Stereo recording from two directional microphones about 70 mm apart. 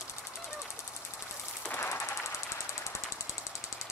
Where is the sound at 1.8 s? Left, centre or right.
Left.